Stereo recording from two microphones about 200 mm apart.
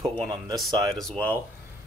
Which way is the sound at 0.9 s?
5° left (ahead or behind).